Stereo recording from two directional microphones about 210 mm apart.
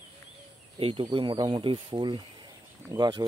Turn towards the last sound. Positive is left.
turn(degrees=-20)  # may be behind; listen again after turning